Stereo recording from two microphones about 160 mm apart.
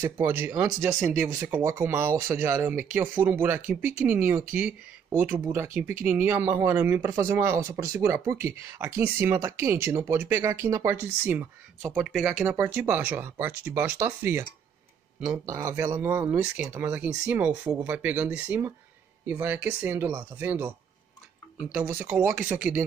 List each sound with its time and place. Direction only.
0.0 s speech: 15° right (ahead or behind)
11.9 s speech: centre (ahead or behind)
12.5 s speech: 15° right (ahead or behind)